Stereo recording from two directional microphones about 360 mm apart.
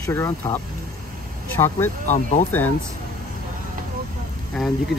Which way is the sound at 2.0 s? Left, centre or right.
Centre.